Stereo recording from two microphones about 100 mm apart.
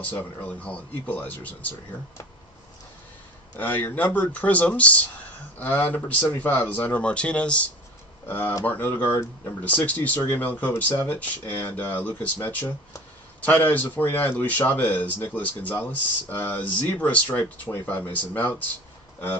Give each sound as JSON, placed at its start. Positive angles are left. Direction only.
{"t": 0.0, "sound": "speech", "side_deg": 15}
{"t": 3.5, "sound": "speech", "side_deg": 20}